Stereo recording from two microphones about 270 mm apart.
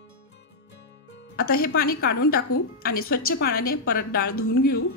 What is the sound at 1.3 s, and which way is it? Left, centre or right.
Speech, left.